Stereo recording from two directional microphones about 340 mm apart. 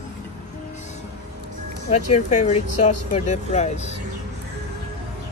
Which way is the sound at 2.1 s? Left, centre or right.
Centre.